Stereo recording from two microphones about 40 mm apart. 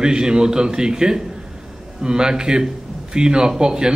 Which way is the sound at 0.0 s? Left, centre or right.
Right.